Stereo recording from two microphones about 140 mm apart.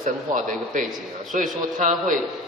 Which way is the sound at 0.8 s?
Centre (ahead or behind).